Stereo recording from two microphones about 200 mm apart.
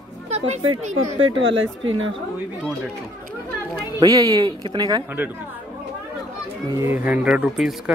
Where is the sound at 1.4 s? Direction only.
70° right (ahead or behind).